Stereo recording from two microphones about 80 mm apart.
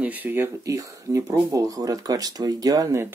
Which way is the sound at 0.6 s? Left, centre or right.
Right.